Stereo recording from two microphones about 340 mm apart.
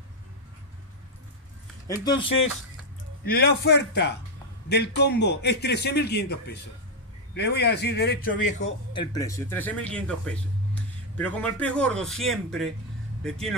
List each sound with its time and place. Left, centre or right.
1.9 s speech: centre
3.3 s a man's voice: left; by 13.6 s centre